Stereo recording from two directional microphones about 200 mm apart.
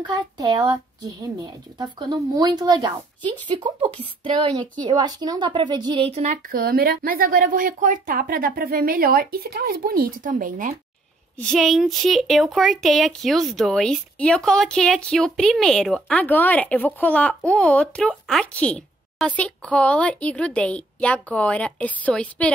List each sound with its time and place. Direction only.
0.0 s a woman's voice: 25° right (ahead or behind); by 10.7 s 40° right (ahead or behind)
11.3 s a woman's voice: centre (ahead or behind)